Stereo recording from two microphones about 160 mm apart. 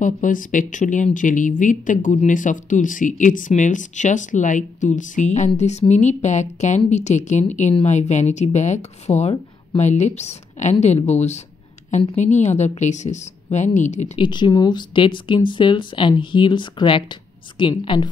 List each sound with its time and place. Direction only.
0.0 s speech: 55° left (ahead or behind)
14.1 s speech: 30° left (ahead or behind)